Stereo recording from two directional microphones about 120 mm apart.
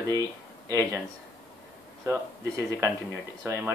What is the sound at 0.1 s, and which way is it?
Speech, 30° right (ahead or behind).